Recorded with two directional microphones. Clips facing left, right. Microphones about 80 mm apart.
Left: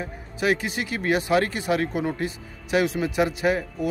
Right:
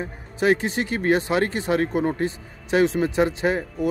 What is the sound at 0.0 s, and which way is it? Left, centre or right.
Speech, right.